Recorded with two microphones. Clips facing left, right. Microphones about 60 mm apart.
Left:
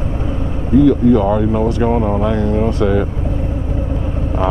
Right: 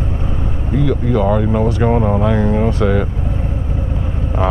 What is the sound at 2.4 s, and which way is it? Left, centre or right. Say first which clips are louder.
Speech: even; right.